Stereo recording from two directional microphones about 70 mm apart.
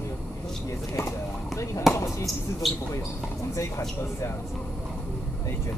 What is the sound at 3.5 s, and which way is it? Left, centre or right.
Speech, left.